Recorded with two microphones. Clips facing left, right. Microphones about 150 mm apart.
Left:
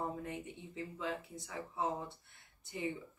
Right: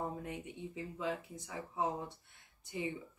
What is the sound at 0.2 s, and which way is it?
Speech, 15° right (ahead or behind).